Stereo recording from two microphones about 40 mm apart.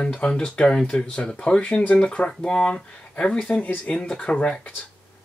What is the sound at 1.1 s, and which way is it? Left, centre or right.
Speech, left.